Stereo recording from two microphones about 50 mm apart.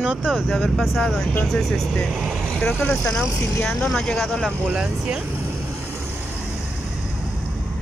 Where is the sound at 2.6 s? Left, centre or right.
Left.